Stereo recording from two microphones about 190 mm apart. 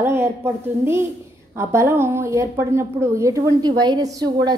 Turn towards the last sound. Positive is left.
turn(degrees=-20)  # may be behind; listen again after turning